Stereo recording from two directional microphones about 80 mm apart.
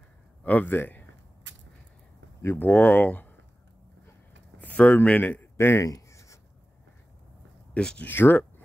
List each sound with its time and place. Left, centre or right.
0.4 s speech: centre
2.4 s speech: left
4.6 s a man's voice: centre
5.9 s writing: left
7.7 s speech: centre
8.1 s speech: left